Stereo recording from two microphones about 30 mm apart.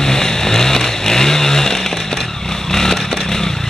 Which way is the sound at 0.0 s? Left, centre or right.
Centre.